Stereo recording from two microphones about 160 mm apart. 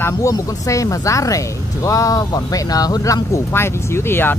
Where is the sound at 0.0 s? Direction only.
20° left (ahead or behind).